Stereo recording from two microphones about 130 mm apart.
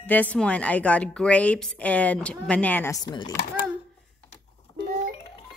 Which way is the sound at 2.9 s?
30° left (ahead or behind).